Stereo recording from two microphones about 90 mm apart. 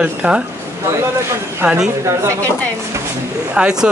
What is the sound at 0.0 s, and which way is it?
Speech, 15° right (ahead or behind).